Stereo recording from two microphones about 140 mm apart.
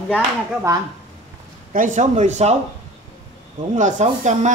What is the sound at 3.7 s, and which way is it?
Speech, 60° right (ahead or behind).